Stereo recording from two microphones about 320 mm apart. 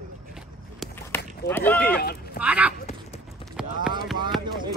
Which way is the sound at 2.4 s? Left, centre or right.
Centre.